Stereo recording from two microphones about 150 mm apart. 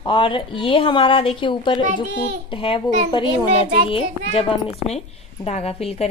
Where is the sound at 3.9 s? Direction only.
40° left (ahead or behind).